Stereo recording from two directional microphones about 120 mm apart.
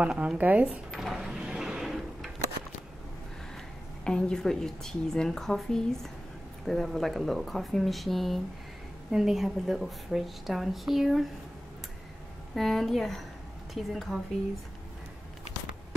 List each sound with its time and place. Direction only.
0.0 s speech: 10° right (ahead or behind)
0.9 s a sound: centre (ahead or behind)
4.0 s a woman's voice: 5° left (ahead or behind)
12.5 s a woman's voice: centre (ahead or behind)